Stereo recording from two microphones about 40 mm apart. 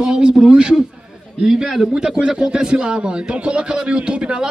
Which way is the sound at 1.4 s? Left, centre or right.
Centre.